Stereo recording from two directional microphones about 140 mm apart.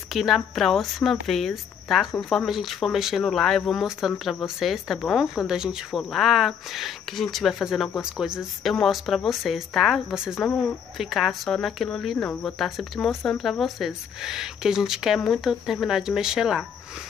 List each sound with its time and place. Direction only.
0.1 s speech: centre (ahead or behind)